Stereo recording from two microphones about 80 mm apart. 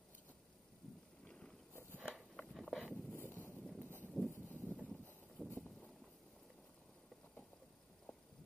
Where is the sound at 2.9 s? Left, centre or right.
Left.